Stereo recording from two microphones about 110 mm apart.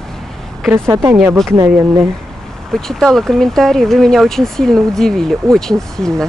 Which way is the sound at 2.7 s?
5° left (ahead or behind).